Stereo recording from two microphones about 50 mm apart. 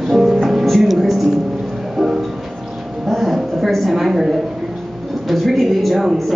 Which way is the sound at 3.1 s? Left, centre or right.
Centre.